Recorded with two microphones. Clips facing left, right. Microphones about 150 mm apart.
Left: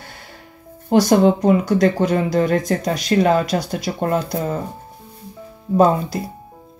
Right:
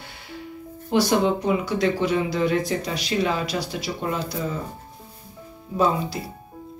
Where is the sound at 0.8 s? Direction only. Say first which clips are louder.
Left 6 dB; 45° left (ahead or behind).